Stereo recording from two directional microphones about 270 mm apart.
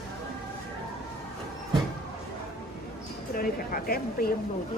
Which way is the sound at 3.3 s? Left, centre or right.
Left.